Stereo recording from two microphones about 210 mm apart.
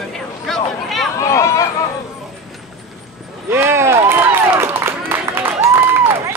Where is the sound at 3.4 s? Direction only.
10° right (ahead or behind).